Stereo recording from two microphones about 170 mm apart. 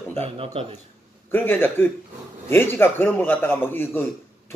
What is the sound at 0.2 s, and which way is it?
Speech, 35° right (ahead or behind).